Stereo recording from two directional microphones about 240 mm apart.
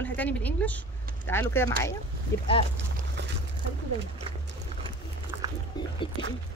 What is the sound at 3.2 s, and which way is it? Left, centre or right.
Boat, right.